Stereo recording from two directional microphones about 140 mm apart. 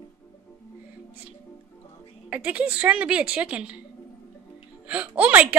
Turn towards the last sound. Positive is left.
turn(degrees=-10)  # may be behind; listen again after turning